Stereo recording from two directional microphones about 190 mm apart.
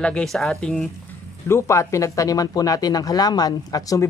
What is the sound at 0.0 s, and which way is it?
Speech, 5° left (ahead or behind).